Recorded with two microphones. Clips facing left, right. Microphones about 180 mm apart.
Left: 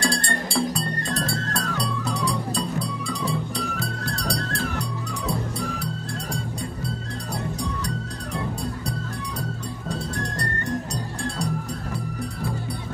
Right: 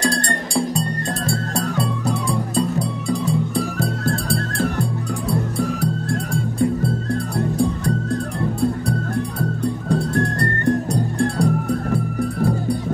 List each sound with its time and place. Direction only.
0.0 s music: 45° right (ahead or behind)
7.3 s music: 55° right (ahead or behind)
9.8 s music: 55° right (ahead or behind)